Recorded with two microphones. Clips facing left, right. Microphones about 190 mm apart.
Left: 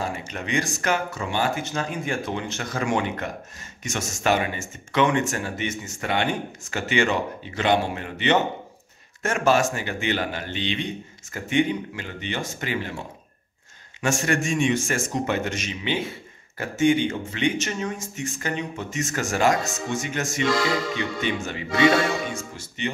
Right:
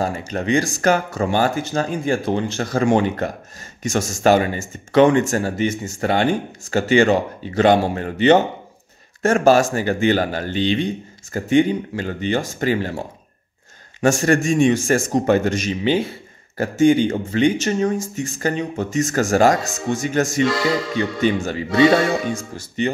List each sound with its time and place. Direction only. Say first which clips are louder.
0.3 s speech: right 9 dB; 35° right (ahead or behind)
14.0 s speech: right 7 dB; 35° right (ahead or behind)
20.4 s music: right 3 dB; centre (ahead or behind)
20.9 s speech: right 7 dB; 35° right (ahead or behind)
21.6 s music: right 5 dB; centre (ahead or behind)
22.8 s speech: right 8 dB; 40° right (ahead or behind)